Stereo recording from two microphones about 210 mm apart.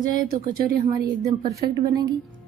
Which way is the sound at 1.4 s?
20° right (ahead or behind).